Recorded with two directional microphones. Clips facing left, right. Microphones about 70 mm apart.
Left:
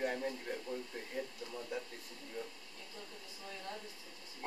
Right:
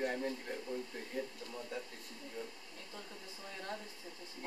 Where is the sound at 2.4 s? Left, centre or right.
Centre.